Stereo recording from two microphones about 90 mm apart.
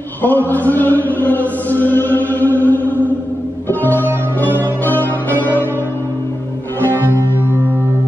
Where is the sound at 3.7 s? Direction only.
20° left (ahead or behind).